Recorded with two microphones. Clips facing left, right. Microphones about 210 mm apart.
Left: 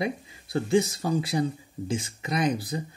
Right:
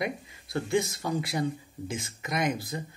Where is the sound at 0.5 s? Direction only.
30° left (ahead or behind).